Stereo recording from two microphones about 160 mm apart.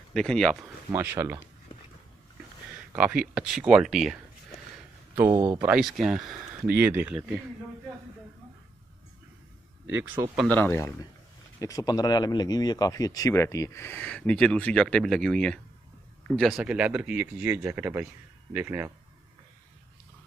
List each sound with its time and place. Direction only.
0.1 s speech: 5° left (ahead or behind)
0.9 s speech: 15° right (ahead or behind)
3.0 s speech: 5° right (ahead or behind)
5.1 s speech: 15° right (ahead or behind)
5.6 s speech: 5° right (ahead or behind)
10.2 s speech: 20° right (ahead or behind)
10.5 s speech: 15° left (ahead or behind)
11.6 s speech: 25° left (ahead or behind); by 18.9 s 15° right (ahead or behind)